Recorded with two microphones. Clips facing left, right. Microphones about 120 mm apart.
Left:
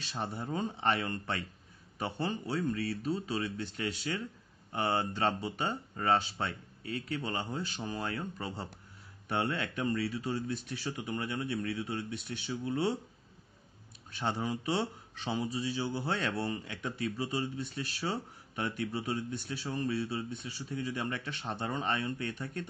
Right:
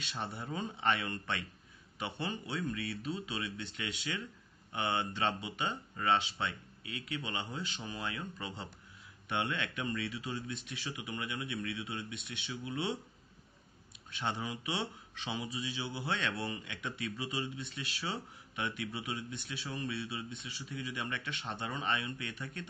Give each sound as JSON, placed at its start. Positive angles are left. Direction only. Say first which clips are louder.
{"t": 0.0, "sound": "speech", "louder": "left 3 dB", "side_deg": 35}
{"t": 14.2, "sound": "speech", "louder": "left 4 dB", "side_deg": 35}